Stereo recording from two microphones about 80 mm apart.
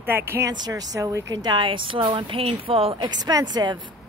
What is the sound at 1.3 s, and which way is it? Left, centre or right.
Speech, right.